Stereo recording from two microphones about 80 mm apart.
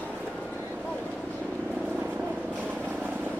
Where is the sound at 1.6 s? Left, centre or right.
Centre.